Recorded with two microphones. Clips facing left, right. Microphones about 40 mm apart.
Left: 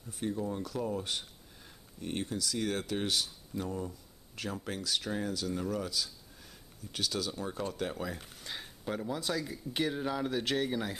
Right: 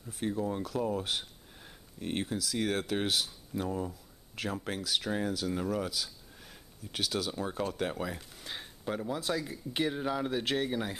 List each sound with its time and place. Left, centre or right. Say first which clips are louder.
0.2 s speech: right 2 dB; centre